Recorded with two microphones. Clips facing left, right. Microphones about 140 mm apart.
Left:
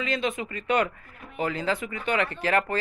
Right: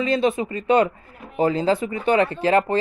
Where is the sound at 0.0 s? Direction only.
35° right (ahead or behind).